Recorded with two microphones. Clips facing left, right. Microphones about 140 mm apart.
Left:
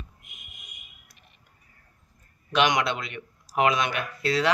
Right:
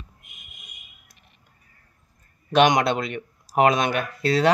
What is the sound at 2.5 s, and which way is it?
Speech, 45° right (ahead or behind).